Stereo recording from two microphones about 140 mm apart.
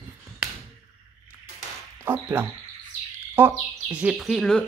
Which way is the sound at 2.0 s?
15° right (ahead or behind).